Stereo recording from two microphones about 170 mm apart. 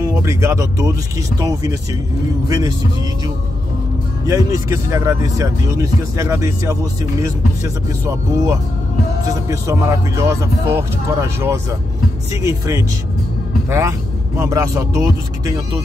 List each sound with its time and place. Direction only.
0.0 s speech: 15° right (ahead or behind)
4.3 s a man's voice: 20° right (ahead or behind)